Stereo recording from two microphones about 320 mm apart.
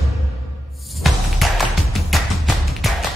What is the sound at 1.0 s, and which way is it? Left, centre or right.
Music, centre.